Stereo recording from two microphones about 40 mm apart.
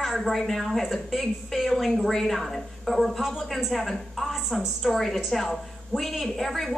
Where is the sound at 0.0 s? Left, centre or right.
Centre.